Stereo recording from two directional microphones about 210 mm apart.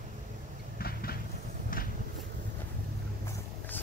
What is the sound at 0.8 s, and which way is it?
Vehicle, 45° left (ahead or behind).